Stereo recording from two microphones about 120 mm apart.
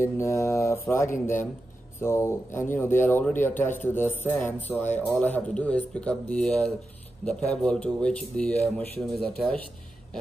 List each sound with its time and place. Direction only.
0.0 s a man's voice: 25° left (ahead or behind); by 9.6 s 5° left (ahead or behind)